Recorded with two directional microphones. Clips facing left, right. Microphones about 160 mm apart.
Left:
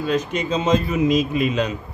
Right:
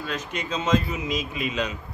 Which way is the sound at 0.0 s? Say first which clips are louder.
Left 9 dB; 25° left (ahead or behind).